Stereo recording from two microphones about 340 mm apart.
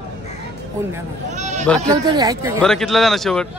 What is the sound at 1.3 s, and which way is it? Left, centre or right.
Speech, right.